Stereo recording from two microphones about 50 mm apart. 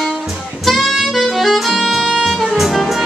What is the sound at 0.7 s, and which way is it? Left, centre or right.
Saxophone, centre.